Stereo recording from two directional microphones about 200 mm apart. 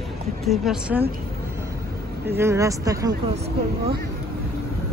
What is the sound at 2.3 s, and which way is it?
Speech, 15° right (ahead or behind).